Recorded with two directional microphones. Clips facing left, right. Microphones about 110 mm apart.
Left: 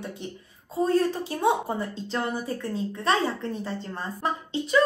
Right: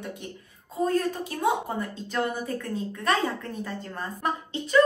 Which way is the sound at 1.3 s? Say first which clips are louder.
Left 2 dB; 35° left (ahead or behind).